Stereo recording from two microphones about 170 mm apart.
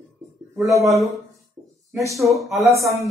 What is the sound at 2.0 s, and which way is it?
Speech, 20° right (ahead or behind).